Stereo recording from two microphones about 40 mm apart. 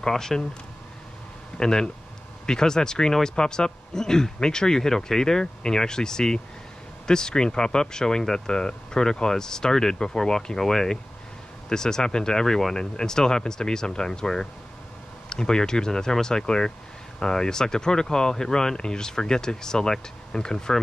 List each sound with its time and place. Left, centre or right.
0.0 s speech: centre
1.6 s speech: centre